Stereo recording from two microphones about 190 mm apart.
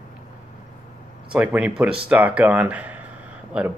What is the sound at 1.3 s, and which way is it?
Speech, 5° right (ahead or behind).